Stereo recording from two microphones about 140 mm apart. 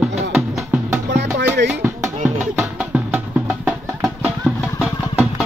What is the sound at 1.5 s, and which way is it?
Music, 15° right (ahead or behind).